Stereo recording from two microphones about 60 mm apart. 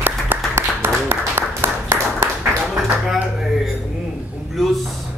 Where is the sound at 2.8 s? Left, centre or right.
Centre.